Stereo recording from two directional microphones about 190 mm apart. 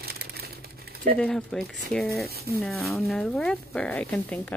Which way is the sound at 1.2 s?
5° left (ahead or behind).